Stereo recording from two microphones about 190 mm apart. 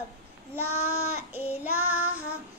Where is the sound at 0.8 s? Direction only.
55° right (ahead or behind).